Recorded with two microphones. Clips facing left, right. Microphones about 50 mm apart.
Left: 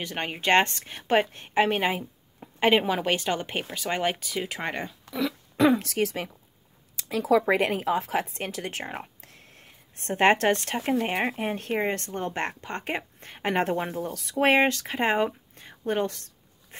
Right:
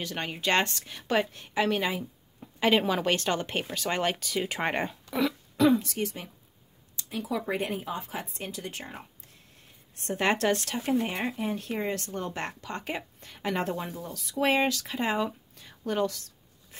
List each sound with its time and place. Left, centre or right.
0.0 s a woman's voice: left; by 4.6 s centre
4.7 s speech: right
5.8 s speech: left
8.3 s a woman's voice: left
13.9 s speech: left
14.4 s speech: left